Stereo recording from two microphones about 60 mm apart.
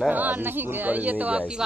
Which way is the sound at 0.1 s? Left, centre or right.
Right.